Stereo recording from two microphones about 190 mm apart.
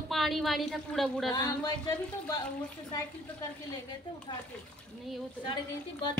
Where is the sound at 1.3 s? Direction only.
20° left (ahead or behind).